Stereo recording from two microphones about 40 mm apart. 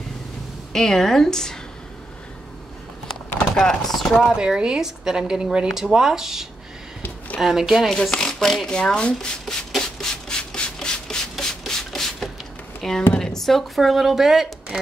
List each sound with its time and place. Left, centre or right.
0.7 s speech: centre
3.5 s speech: centre
4.2 s speech: centre
7.4 s speech: centre
7.9 s speech: centre
9.7 s rub: centre
12.8 s speech: centre